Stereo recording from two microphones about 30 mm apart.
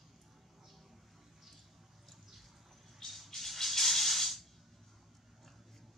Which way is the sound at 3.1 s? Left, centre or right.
Centre.